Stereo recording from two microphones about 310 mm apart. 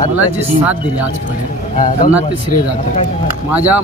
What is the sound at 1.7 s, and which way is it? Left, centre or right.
Speech, left.